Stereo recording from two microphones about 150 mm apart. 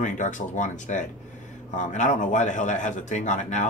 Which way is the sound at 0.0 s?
55° left (ahead or behind).